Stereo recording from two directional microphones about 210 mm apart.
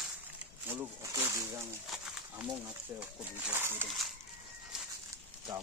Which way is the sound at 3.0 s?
10° right (ahead or behind).